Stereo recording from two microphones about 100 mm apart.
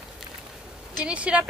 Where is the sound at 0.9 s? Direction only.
10° right (ahead or behind).